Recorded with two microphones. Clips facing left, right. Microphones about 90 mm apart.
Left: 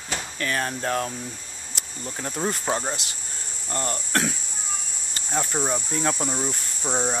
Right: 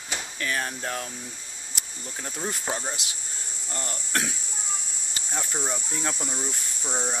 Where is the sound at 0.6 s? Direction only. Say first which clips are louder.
Left 5 dB; 60° left (ahead or behind).